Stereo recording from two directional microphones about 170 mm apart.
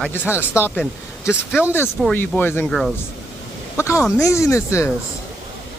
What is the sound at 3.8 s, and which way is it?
Speech, 15° left (ahead or behind).